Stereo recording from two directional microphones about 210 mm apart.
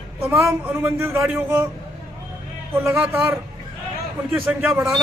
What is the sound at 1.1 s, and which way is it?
Speech, centre (ahead or behind).